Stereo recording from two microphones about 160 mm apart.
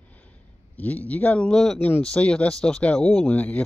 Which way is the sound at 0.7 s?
10° left (ahead or behind).